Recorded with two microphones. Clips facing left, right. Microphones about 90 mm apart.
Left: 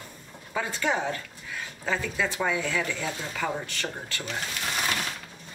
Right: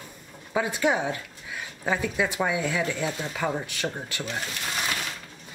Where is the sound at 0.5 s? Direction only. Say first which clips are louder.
Right 4 dB; 15° right (ahead or behind).